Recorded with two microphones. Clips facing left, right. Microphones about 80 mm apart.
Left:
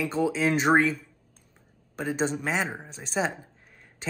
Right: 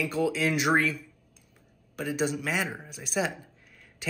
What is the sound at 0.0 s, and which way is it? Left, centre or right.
Speech, left.